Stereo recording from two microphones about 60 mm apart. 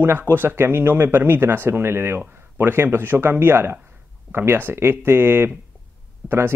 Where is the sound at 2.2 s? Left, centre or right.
Right.